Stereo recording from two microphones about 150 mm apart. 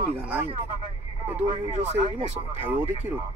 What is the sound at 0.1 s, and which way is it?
Speech, 10° right (ahead or behind).